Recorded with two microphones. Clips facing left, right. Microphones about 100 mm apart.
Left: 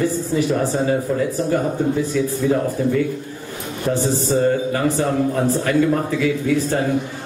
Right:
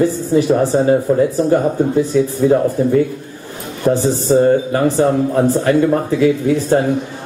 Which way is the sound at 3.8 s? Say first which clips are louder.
Right 6 dB; 30° right (ahead or behind).